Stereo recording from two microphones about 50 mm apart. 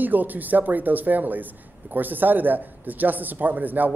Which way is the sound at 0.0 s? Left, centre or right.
Right.